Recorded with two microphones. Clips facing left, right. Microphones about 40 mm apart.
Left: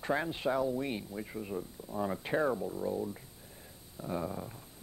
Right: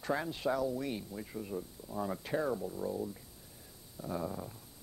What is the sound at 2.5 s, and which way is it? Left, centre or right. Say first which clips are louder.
Speech: left 2 dB; centre.